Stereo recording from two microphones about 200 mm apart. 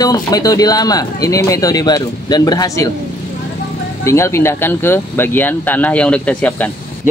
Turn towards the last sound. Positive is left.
turn(degrees=5)  # may be behind; listen again after turning